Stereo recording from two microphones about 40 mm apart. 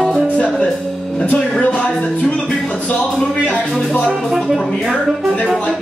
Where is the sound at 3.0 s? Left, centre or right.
Left.